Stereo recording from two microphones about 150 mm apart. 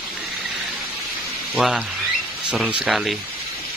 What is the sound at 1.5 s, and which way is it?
Speech, centre (ahead or behind).